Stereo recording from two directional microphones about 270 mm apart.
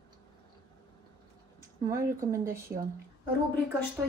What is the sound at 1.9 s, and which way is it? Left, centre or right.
Speech, centre.